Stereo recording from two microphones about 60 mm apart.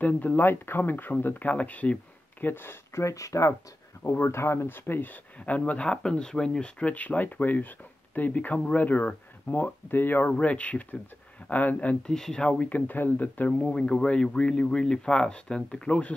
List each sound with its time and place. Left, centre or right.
0.0 s speech: left
2.4 s speech: left
3.0 s speech: left
4.2 s speech: left
5.4 s speech: left
10.3 s speech: left
12.1 s speech: centre